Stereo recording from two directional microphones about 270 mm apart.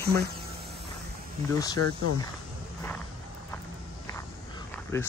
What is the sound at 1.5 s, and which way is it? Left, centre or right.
Speech, centre.